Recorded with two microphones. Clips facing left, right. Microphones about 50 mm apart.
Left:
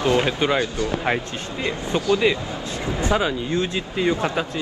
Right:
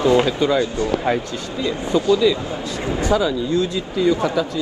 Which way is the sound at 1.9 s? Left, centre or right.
Left.